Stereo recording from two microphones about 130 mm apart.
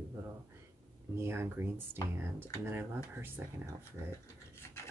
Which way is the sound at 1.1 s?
20° right (ahead or behind).